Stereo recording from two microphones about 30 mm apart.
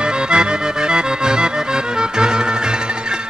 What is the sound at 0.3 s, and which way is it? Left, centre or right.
Accordion, right.